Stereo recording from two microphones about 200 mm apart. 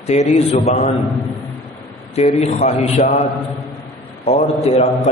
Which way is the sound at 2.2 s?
35° left (ahead or behind).